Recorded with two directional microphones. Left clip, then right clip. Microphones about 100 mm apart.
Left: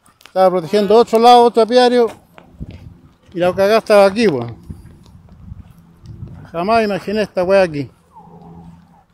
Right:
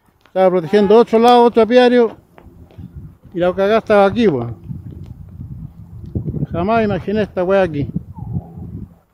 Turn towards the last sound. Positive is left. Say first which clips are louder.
# left 2 dB
turn(degrees=-15)  # may be behind; listen again after turning